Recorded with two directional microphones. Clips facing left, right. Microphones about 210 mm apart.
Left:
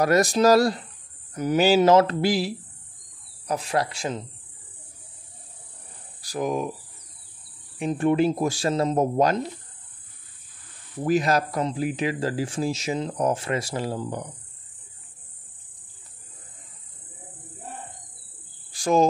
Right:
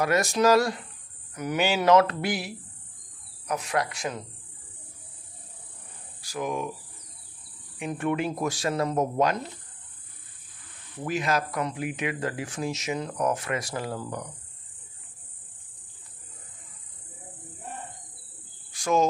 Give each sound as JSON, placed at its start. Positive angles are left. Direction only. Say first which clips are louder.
{"t": 0.0, "sound": "speech", "louder": "left 4 dB", "side_deg": 35}
{"t": 6.2, "sound": "speech", "louder": "left 4 dB", "side_deg": 35}
{"t": 7.8, "sound": "speech", "louder": "left 7 dB", "side_deg": 30}
{"t": 11.1, "sound": "speech", "louder": "left 6 dB", "side_deg": 35}
{"t": 18.7, "sound": "cricket", "louder": "left 4 dB", "side_deg": 35}